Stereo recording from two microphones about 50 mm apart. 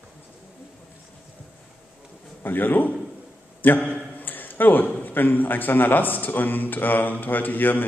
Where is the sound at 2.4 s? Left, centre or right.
Left.